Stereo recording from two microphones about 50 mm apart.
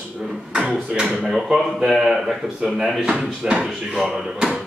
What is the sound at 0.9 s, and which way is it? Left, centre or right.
Speech, centre.